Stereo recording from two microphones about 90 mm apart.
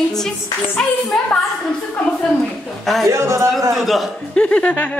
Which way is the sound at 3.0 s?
35° right (ahead or behind).